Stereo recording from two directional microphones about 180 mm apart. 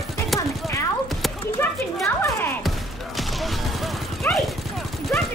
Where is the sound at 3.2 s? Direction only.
Centre (ahead or behind).